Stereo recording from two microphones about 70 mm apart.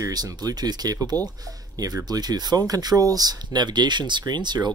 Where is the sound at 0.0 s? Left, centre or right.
Right.